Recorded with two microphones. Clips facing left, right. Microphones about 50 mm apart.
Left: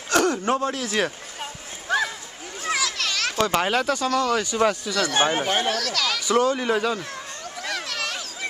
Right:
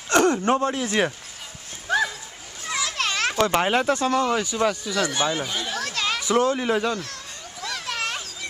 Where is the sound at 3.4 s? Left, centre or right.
Centre.